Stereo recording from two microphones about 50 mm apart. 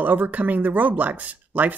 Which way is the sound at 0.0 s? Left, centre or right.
Right.